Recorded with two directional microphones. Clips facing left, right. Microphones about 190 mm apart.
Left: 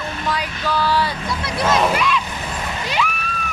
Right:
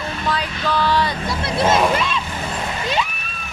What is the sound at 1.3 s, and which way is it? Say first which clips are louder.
Speech: right 3 dB; 25° right (ahead or behind).